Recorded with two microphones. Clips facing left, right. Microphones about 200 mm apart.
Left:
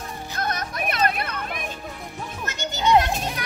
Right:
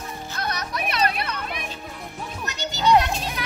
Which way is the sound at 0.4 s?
50° left (ahead or behind).